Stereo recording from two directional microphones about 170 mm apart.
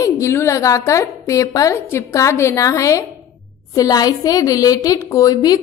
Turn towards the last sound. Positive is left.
turn(degrees=20)  # may be behind; listen again after turning